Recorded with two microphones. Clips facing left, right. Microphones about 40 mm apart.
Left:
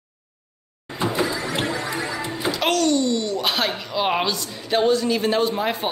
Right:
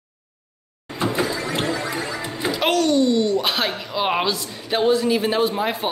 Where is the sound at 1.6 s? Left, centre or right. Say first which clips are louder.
Right 1 dB; left.